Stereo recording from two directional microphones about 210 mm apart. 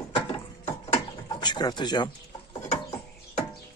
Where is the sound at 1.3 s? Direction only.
20° left (ahead or behind).